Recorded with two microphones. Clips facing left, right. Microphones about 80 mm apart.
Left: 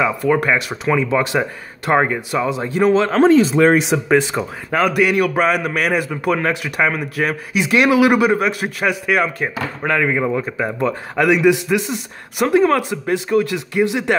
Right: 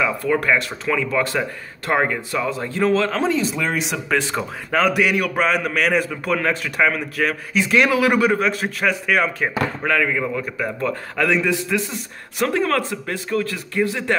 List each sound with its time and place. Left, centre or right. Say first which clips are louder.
0.0 s a man's voice: left 3 dB; centre
3.1 s speech: left 9 dB; left
3.9 s a man's voice: left 6 dB; centre
9.8 s a man's voice: left 5 dB; left